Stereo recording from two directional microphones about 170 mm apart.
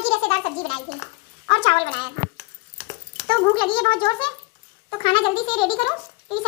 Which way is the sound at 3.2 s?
30° left (ahead or behind).